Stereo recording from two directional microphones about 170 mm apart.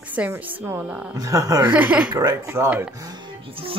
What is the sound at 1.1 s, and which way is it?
Speech, 20° right (ahead or behind).